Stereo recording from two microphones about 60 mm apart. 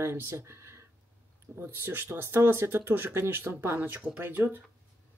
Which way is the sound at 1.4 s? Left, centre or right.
Right.